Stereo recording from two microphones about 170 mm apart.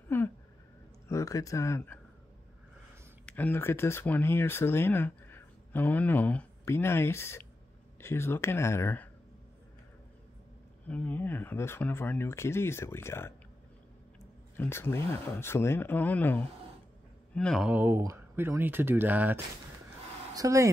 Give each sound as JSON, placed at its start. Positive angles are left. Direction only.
{"t": 0.1, "sound": "a sound", "side_deg": 15}
{"t": 1.0, "sound": "speech", "side_deg": 20}
{"t": 3.3, "sound": "speech", "side_deg": 10}
{"t": 10.9, "sound": "speech", "side_deg": 10}
{"t": 14.6, "sound": "speech", "side_deg": 15}
{"t": 17.6, "sound": "speech", "side_deg": -10}